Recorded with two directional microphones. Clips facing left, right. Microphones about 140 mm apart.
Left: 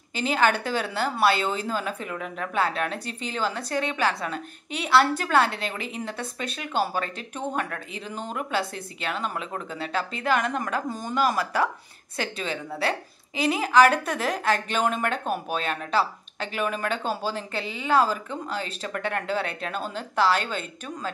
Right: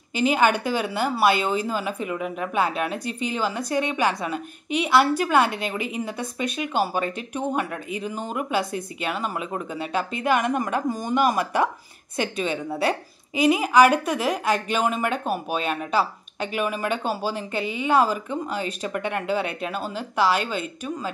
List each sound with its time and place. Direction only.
0.1 s a woman's voice: 10° right (ahead or behind)